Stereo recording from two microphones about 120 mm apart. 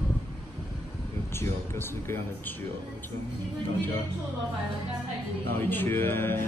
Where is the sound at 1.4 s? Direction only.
20° left (ahead or behind).